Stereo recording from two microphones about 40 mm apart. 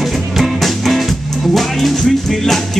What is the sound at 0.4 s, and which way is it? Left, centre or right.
Music, centre.